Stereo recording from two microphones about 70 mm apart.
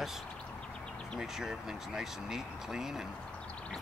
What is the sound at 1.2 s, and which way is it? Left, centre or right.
Speech, centre.